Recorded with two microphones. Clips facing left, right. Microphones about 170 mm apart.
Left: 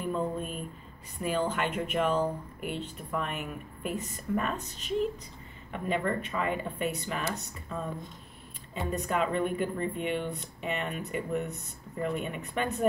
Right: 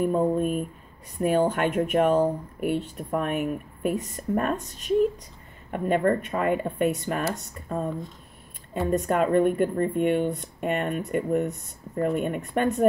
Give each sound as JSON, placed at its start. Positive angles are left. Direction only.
{"t": 0.0, "sound": "speech", "side_deg": -45}